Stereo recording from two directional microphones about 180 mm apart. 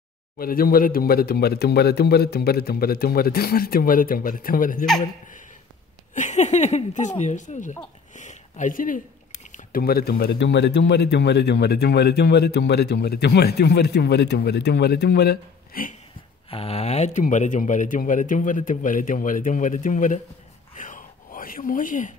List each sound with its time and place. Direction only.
0.4 s speech: 55° left (ahead or behind)
6.1 s speech: 40° left (ahead or behind)
16.4 s speech: 30° left (ahead or behind)
20.7 s a sound: 45° left (ahead or behind)